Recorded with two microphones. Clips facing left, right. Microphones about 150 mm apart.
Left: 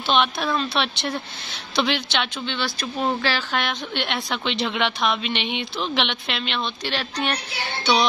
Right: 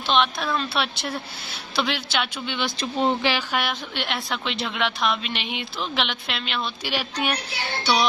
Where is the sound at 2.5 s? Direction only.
20° right (ahead or behind).